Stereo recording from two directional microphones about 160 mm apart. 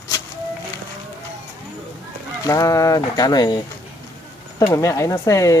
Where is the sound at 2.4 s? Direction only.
20° left (ahead or behind).